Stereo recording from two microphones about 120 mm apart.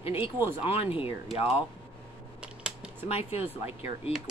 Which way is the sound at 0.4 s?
20° right (ahead or behind).